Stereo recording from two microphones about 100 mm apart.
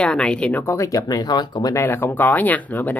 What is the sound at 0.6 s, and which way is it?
Speech, 35° left (ahead or behind).